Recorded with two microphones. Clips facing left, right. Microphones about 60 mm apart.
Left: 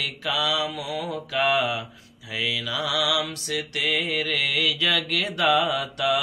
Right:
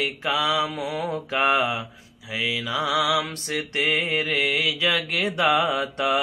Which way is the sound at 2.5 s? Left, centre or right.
Right.